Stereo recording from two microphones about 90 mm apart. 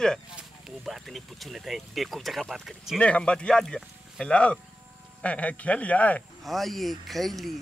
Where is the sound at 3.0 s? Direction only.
15° left (ahead or behind).